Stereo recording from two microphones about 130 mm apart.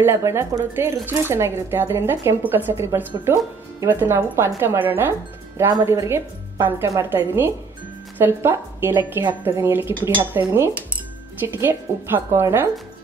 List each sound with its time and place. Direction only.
0.0 s a woman's voice: 20° right (ahead or behind)